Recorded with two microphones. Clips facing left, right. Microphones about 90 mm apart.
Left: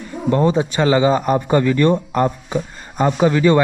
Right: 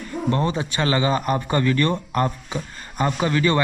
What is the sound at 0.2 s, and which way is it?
A man's voice, 5° left (ahead or behind).